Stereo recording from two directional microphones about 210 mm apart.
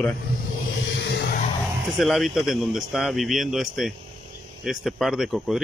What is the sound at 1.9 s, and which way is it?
Speech, centre (ahead or behind).